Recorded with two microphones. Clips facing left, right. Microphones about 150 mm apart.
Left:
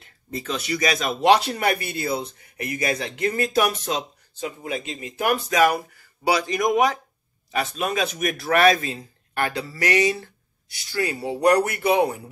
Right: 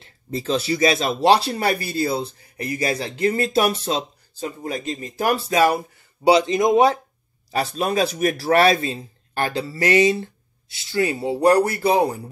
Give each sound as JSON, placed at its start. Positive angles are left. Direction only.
{"t": 0.0, "sound": "speech", "side_deg": -30}